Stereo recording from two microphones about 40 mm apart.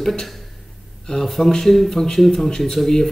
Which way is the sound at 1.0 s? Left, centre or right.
Centre.